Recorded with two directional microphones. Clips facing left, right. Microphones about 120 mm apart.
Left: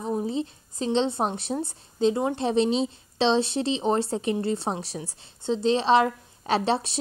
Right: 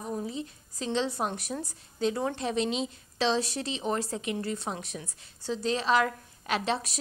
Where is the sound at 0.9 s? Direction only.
25° left (ahead or behind).